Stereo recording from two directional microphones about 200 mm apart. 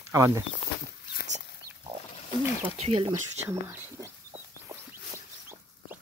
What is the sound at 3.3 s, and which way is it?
Speech, 10° right (ahead or behind).